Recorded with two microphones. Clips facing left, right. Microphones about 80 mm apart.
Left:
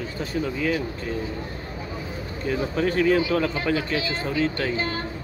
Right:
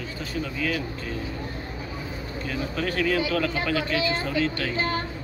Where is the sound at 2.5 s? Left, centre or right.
Centre.